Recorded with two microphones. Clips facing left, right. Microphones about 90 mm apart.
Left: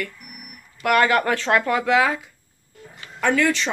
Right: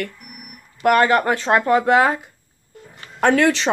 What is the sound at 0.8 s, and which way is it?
Speech, 35° right (ahead or behind).